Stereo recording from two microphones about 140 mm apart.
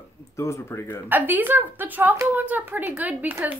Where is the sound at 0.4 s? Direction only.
20° left (ahead or behind).